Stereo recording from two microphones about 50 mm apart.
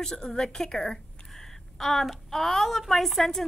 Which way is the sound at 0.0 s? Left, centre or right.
Centre.